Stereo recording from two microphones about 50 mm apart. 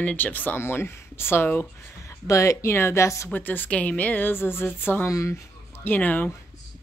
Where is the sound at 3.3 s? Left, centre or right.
Left.